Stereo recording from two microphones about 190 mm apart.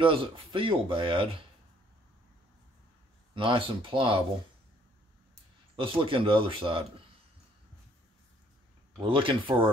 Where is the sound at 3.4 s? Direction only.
25° right (ahead or behind).